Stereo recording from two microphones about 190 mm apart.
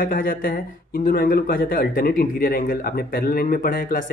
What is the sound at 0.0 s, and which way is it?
Speech, 50° left (ahead or behind).